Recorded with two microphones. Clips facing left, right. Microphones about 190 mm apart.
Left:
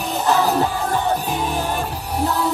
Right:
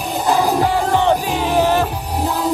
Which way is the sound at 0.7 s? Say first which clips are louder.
Right 5 dB; 85° right.